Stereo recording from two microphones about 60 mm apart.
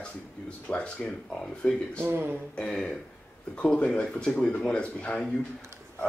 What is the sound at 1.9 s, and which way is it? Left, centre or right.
Speech, right.